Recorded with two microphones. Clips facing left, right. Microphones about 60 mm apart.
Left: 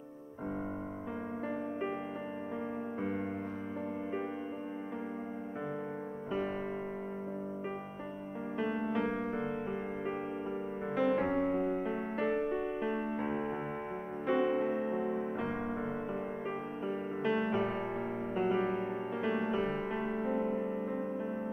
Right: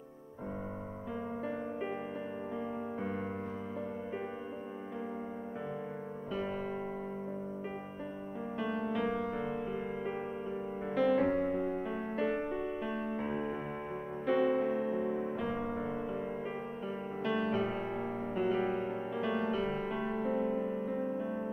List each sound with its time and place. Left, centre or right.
8.5 s music: left
11.0 s music: centre
14.2 s electric piano: centre
15.3 s music: left; by 21.2 s centre